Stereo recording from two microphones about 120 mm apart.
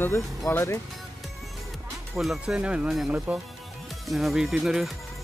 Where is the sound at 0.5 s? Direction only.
25° left (ahead or behind).